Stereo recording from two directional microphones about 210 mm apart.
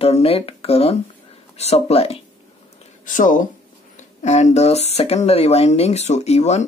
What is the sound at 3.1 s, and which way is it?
Speech, 40° left (ahead or behind).